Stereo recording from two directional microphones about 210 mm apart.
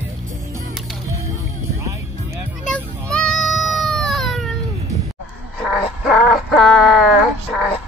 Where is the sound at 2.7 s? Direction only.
5° left (ahead or behind).